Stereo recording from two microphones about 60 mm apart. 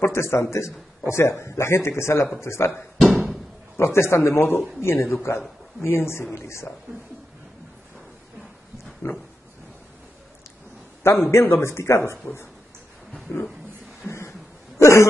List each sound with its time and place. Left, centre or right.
0.0 s a man's voice: left
3.7 s a man's voice: left
9.0 s a man's voice: left
11.1 s a man's voice: left
14.0 s a sound: left
14.8 s cough: left